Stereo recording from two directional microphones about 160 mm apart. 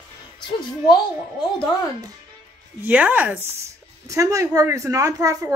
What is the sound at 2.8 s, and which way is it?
Speech, 10° right (ahead or behind).